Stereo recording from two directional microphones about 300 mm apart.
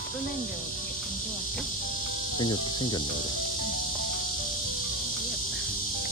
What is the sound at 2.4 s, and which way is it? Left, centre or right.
Insect, centre.